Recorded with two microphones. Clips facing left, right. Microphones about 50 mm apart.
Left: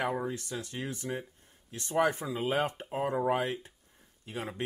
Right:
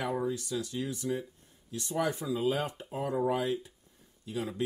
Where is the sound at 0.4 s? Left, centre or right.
Left.